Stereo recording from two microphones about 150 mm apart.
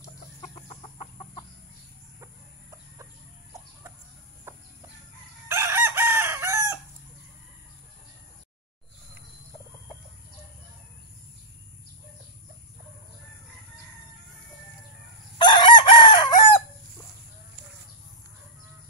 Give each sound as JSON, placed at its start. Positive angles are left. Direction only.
{"t": 4.5, "sound": "chicken", "side_deg": -20}
{"t": 15.3, "sound": "chicken", "side_deg": 30}